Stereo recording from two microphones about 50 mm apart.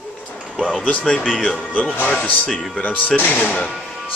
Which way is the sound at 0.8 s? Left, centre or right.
Left.